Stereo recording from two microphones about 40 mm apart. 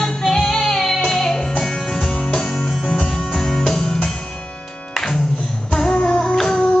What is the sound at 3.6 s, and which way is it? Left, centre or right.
Music, centre.